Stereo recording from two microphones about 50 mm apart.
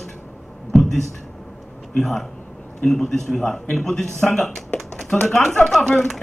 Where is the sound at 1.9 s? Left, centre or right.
Centre.